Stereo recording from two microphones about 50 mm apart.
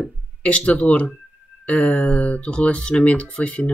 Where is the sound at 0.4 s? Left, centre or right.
Left.